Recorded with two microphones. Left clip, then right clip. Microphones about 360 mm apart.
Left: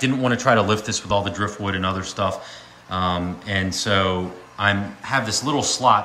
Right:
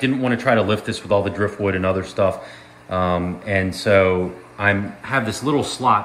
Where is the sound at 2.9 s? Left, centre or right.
Centre.